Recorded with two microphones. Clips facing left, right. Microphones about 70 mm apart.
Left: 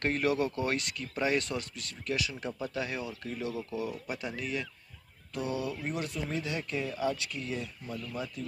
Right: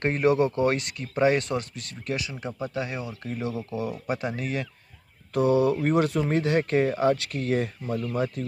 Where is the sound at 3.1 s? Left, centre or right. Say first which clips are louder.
Right 5 dB; right.